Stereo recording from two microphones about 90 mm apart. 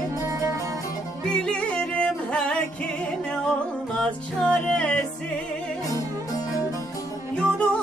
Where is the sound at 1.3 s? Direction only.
10° left (ahead or behind).